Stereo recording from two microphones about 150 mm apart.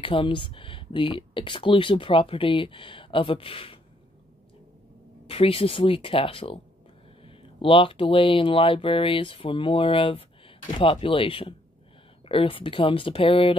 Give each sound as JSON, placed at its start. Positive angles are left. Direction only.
{"t": 0.0, "sound": "speech", "side_deg": 35}
{"t": 5.2, "sound": "speech", "side_deg": 40}